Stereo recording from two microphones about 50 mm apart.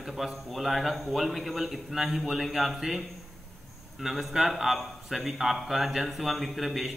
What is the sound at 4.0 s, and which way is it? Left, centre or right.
A man's voice, centre.